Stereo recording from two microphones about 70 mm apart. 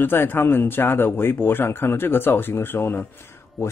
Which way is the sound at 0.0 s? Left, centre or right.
Left.